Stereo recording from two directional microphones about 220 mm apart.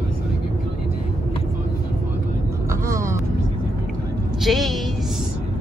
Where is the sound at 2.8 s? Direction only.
15° right (ahead or behind).